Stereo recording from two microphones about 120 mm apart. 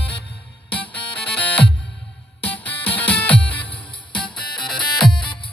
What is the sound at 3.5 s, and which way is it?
Music, 45° left (ahead or behind).